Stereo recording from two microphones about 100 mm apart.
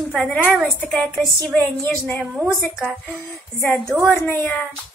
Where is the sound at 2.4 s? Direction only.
15° left (ahead or behind).